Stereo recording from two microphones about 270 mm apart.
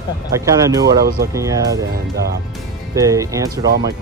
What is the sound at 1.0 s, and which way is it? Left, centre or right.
Speech, right.